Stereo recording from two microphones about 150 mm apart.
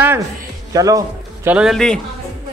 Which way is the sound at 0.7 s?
25° right (ahead or behind).